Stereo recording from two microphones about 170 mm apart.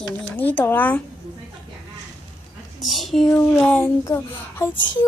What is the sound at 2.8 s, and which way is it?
Speech, centre (ahead or behind).